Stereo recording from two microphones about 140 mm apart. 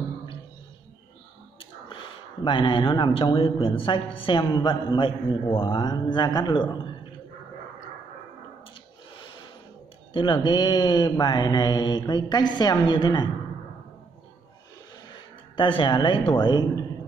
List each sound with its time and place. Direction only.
2.4 s mantra: 35° left (ahead or behind)
10.1 s mantra: 35° left (ahead or behind)
15.5 s mantra: 35° left (ahead or behind)